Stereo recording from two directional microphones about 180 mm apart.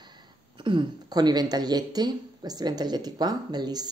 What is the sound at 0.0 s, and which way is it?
Speech, 25° right (ahead or behind).